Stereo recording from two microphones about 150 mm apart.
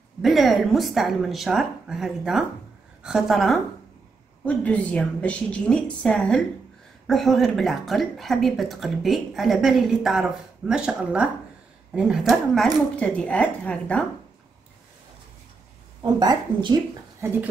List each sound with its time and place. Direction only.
0.2 s a woman's voice: centre (ahead or behind)
16.2 s speech: 30° right (ahead or behind)
17.2 s speech: 15° right (ahead or behind)